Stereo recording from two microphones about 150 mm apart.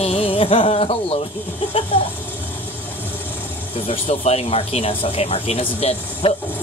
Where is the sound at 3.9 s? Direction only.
45° left (ahead or behind).